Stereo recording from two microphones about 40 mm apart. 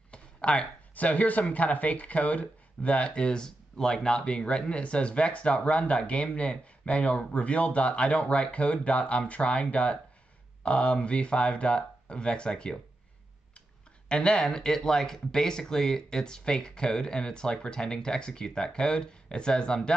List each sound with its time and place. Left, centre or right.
0.1 s a sound: left
0.9 s speech: left
14.0 s speech: left